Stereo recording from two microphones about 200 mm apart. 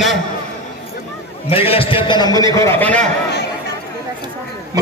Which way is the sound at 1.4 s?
30° left (ahead or behind).